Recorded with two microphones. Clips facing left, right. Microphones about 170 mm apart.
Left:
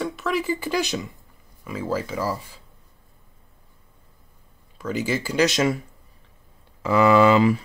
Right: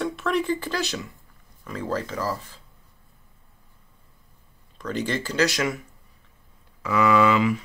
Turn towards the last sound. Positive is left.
turn(degrees=35)  # may be behind; listen again after turning